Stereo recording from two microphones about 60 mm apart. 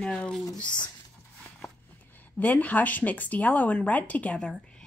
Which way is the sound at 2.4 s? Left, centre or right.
Left.